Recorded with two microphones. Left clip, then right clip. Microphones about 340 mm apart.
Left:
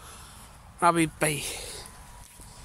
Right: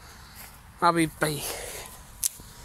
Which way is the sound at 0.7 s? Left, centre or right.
Centre.